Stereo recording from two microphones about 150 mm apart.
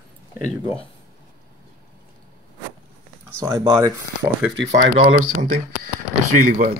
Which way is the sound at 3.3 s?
20° right (ahead or behind).